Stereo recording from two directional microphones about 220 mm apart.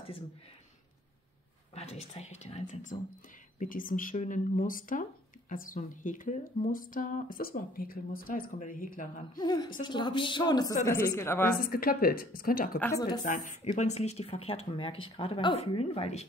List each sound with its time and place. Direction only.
1.8 s speech: 30° left (ahead or behind)
9.4 s a woman's voice: 20° left (ahead or behind)
11.5 s speech: 40° left (ahead or behind)
12.7 s a woman's voice: 10° left (ahead or behind)
13.2 s speech: 35° left (ahead or behind)